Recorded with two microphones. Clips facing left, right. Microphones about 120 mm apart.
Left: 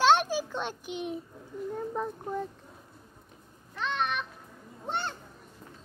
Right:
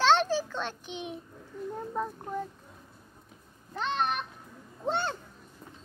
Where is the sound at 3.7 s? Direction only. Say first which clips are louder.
Right 1 dB; 35° right (ahead or behind).